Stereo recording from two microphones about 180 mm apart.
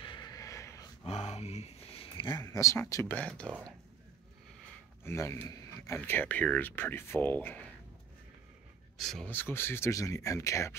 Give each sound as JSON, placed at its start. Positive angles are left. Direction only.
{"t": 0.0, "sound": "a sound", "side_deg": 25}
{"t": 1.0, "sound": "speech", "side_deg": 35}
{"t": 5.0, "sound": "speech", "side_deg": 15}
{"t": 8.9, "sound": "speech", "side_deg": 0}